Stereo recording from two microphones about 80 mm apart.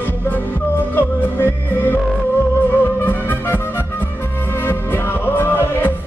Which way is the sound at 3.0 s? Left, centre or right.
Left.